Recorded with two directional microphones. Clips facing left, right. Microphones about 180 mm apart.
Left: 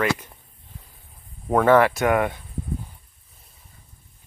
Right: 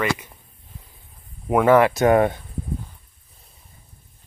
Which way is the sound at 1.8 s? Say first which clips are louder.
Right 3 dB; 20° right (ahead or behind).